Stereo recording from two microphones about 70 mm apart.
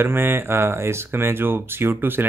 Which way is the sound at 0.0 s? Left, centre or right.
Right.